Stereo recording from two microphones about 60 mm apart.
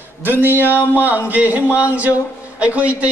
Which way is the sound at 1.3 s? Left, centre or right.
Right.